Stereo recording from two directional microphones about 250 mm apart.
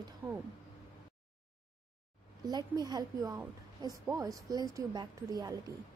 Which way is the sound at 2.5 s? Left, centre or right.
Centre.